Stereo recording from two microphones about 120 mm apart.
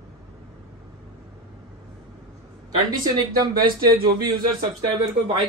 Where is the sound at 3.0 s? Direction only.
35° right (ahead or behind).